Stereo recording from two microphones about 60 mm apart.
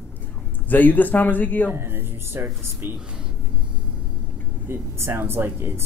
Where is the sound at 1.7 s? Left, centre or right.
Right.